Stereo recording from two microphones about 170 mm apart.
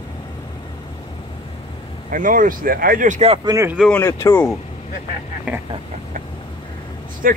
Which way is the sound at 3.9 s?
15° left (ahead or behind).